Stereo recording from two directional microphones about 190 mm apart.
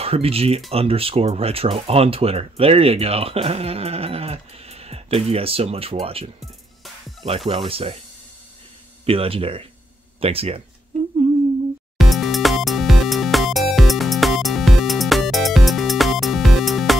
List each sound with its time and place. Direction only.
0.0 s speech: 30° right (ahead or behind)
9.0 s speech: 30° right (ahead or behind)
12.0 s music: centre (ahead or behind)